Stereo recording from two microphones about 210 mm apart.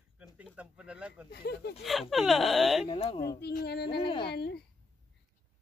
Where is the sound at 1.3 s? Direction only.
50° left (ahead or behind).